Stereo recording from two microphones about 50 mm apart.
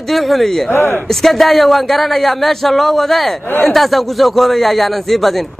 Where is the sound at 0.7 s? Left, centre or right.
Left.